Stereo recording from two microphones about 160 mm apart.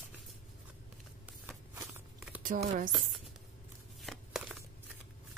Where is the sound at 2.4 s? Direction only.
55° right (ahead or behind).